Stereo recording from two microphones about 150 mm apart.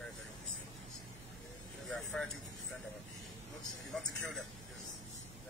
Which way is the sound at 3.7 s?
Centre (ahead or behind).